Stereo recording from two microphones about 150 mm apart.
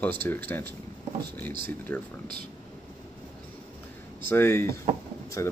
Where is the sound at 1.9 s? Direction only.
10° left (ahead or behind).